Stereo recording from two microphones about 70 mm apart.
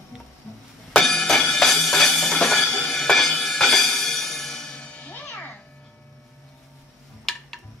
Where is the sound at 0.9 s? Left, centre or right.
Centre.